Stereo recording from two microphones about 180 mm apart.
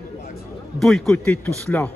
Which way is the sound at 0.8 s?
Centre (ahead or behind).